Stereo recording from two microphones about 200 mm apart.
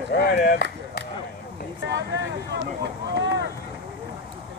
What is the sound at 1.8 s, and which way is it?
Speech, 65° right (ahead or behind).